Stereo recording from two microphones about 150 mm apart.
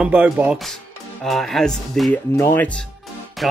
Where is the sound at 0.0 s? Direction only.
10° right (ahead or behind).